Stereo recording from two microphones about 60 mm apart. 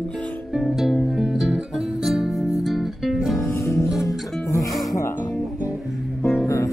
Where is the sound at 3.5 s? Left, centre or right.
Left.